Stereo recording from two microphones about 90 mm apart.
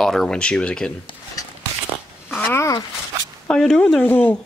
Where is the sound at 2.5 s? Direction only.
30° left (ahead or behind).